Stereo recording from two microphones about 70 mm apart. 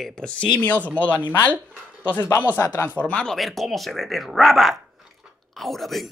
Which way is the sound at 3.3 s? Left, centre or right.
Centre.